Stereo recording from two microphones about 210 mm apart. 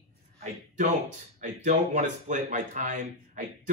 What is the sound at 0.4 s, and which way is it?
Speech, 35° right (ahead or behind).